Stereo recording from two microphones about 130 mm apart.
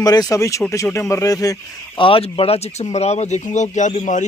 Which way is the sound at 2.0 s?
45° left (ahead or behind).